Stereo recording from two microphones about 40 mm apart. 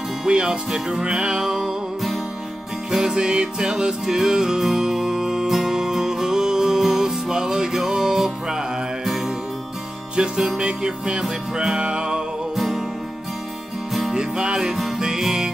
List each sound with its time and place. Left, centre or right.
0.2 s music: right
2.9 s music: centre
10.1 s music: right
12.5 s music: centre
14.1 s music: centre
14.6 s music: centre